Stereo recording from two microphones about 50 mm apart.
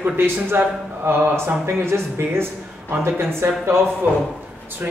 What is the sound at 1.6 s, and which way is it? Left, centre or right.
Speech, right.